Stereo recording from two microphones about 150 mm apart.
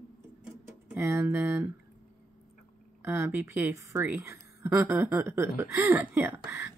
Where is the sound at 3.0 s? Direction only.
15° right (ahead or behind).